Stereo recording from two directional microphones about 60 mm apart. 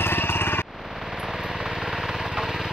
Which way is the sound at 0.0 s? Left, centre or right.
Left.